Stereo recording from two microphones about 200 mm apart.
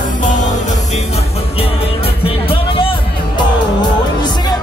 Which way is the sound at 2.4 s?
25° left (ahead or behind).